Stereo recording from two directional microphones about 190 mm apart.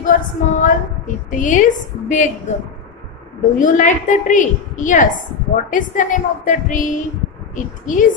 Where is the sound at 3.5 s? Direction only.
40° left (ahead or behind).